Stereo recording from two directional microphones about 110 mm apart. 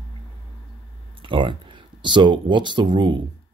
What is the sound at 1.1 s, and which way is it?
Speech, 50° right (ahead or behind).